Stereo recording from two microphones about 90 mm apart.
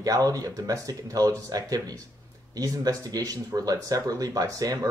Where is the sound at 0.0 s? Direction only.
40° right (ahead or behind).